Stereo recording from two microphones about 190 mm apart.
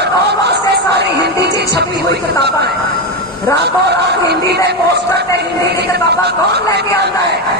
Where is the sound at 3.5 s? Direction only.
15° left (ahead or behind).